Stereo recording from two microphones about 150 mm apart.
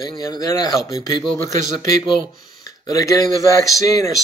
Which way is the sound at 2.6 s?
20° left (ahead or behind).